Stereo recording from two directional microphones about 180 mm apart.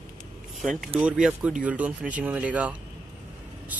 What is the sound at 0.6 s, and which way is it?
Vehicle, centre (ahead or behind).